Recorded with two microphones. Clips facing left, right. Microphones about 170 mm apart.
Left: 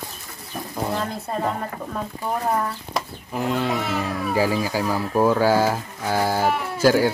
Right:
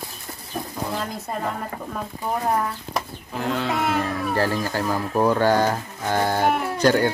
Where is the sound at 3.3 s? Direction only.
5° left (ahead or behind).